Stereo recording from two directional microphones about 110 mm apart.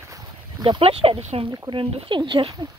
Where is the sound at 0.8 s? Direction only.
60° right (ahead or behind).